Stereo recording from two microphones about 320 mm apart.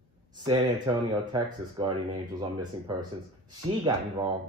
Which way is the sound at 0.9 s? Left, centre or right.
Centre.